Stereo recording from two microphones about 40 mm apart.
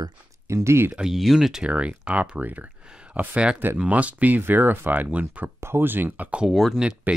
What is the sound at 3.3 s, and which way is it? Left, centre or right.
Speech, right.